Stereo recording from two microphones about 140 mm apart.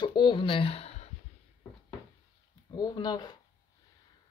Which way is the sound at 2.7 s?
30° left (ahead or behind).